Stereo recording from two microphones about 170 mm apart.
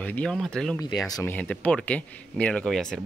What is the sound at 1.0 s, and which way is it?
Speech, 20° left (ahead or behind).